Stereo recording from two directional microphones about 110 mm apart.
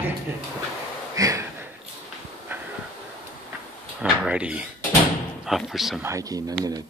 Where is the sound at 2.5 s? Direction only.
20° right (ahead or behind).